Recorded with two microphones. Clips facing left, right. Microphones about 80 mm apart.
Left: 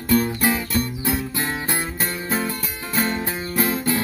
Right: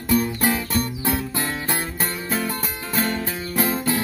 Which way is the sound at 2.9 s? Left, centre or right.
Left.